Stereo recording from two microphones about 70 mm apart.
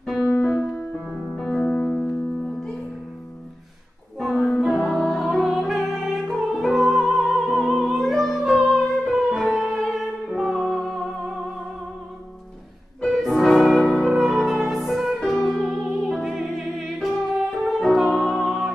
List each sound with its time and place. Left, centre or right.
0.0 s music: centre
1.3 s music: centre
1.6 s music: centre
1.9 s music: centre
4.2 s music: centre
5.2 s music: centre
13.0 s music: centre